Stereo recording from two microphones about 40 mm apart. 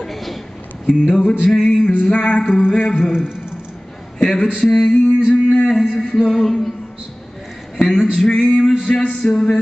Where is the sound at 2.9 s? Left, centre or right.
Centre.